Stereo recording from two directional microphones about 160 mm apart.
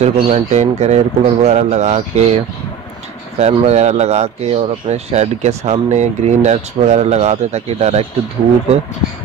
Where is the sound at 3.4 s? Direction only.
45° right (ahead or behind).